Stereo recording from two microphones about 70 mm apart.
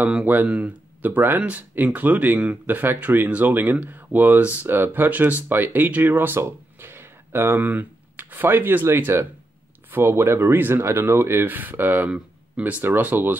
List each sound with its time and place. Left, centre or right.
0.2 s speech: right